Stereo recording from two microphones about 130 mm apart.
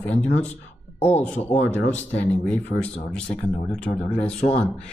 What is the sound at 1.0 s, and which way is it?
Speech, 60° left (ahead or behind).